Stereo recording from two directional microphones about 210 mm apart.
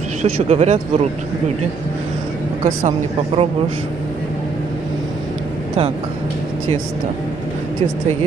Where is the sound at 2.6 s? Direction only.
30° right (ahead or behind).